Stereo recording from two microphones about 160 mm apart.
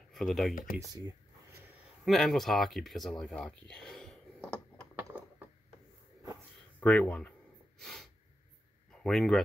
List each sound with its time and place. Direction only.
0.1 s speech: centre (ahead or behind)
0.7 s speech: 20° right (ahead or behind)
2.0 s speech: centre (ahead or behind)
6.8 s speech: 10° left (ahead or behind)
7.8 s snort: centre (ahead or behind)
9.0 s speech: centre (ahead or behind)